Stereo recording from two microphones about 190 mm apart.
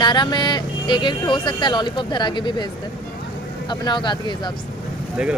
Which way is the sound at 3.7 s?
25° left (ahead or behind).